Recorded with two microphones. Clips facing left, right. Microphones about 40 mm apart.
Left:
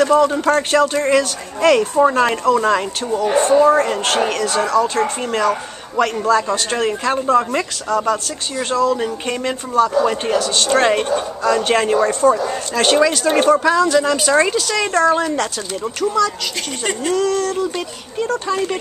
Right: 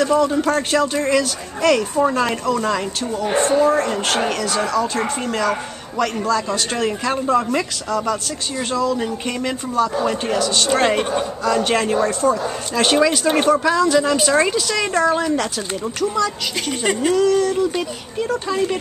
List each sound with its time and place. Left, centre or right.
0.0 s speech: left
0.4 s speech: centre